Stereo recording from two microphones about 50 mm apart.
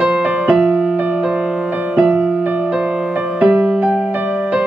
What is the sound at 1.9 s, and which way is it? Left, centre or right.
Music, right.